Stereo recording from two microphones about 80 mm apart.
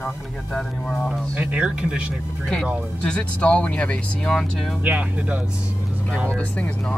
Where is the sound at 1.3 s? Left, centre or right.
Centre.